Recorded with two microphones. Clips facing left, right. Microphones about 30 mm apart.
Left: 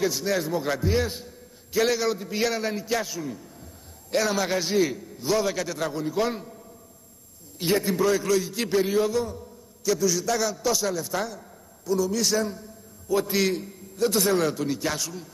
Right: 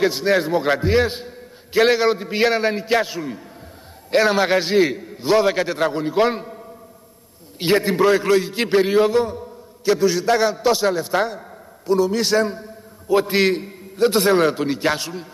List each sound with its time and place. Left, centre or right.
0.0 s a man's voice: right